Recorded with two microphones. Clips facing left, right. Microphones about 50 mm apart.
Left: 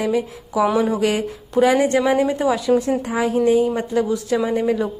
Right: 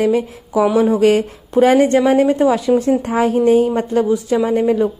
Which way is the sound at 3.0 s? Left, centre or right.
Right.